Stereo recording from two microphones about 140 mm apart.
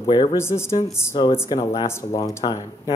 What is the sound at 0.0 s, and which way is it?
Speech, 35° left (ahead or behind).